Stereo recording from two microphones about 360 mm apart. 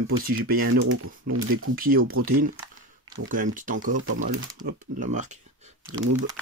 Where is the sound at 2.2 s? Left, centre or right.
Right.